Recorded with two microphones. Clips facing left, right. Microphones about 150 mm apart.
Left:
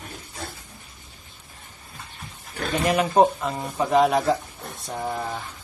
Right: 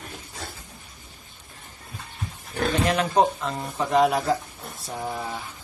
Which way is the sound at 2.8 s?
10° left (ahead or behind).